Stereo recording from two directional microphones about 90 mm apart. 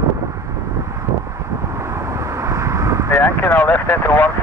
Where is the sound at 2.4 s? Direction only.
35° right (ahead or behind).